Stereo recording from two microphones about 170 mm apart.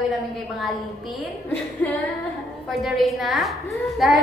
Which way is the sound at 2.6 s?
Centre (ahead or behind).